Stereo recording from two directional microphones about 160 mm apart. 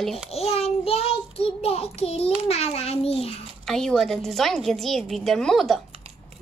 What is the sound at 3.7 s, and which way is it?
A woman's voice, 5° left (ahead or behind).